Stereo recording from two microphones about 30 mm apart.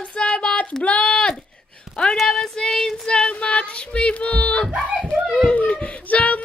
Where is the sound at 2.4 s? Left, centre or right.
Left.